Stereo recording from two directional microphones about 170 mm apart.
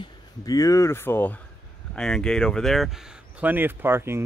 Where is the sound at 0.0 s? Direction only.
20° left (ahead or behind).